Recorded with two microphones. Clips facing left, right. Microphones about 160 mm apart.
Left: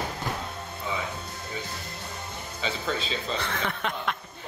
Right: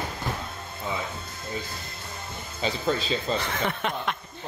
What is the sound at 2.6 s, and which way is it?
Speech, 40° right (ahead or behind).